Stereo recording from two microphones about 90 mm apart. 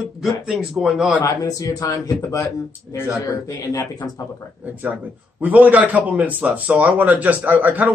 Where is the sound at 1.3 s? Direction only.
40° left (ahead or behind).